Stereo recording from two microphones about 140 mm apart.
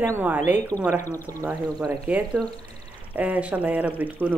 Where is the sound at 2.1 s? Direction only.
10° right (ahead or behind).